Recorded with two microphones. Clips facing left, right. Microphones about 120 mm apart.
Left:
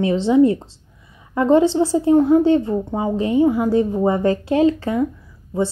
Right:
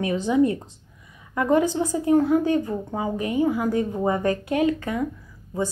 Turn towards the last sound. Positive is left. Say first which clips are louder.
# left 5 dB
turn(degrees=25)  # may be behind; listen again after turning